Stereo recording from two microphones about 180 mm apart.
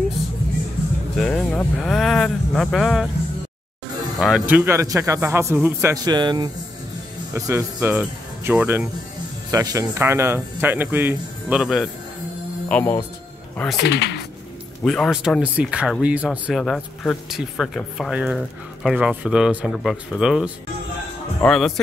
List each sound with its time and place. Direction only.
1.1 s speech: 5° left (ahead or behind)
4.2 s speech: 5° right (ahead or behind)
7.9 s speech: 5° right (ahead or behind)
12.6 s speech: 10° left (ahead or behind)
13.7 s speech: 70° left (ahead or behind)
14.8 s speech: centre (ahead or behind)